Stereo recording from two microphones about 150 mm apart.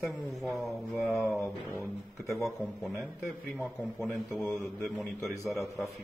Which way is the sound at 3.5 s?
Centre (ahead or behind).